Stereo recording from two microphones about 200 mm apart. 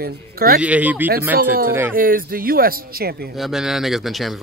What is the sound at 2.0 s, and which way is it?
Speech, 45° right (ahead or behind).